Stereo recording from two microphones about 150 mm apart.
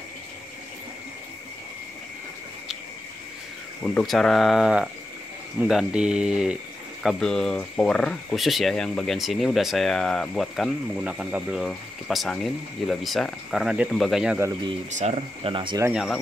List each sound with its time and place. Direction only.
3.8 s speech: 5° left (ahead or behind)
14.9 s speech: 50° right (ahead or behind); by 15.8 s 35° right (ahead or behind)
15.9 s speech: centre (ahead or behind)